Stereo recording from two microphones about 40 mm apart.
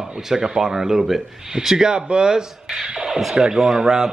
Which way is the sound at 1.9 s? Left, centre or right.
Right.